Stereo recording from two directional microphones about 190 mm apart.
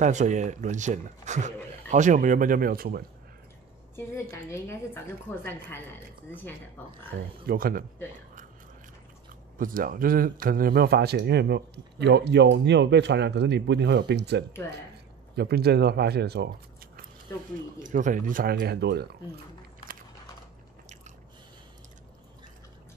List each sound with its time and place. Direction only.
0.0 s speech: 40° right (ahead or behind)
3.9 s a woman's voice: 15° left (ahead or behind)
7.1 s speech: 50° right (ahead or behind)
9.6 s a man's voice: 45° right (ahead or behind)